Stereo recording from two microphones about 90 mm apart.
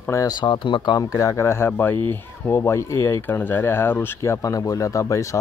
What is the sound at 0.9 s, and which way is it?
Speech, 40° left (ahead or behind).